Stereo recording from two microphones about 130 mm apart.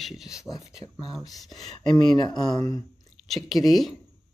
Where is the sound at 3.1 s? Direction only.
Centre (ahead or behind).